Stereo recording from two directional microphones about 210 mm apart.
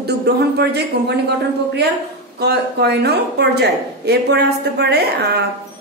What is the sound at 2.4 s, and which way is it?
A woman's voice, 50° right (ahead or behind).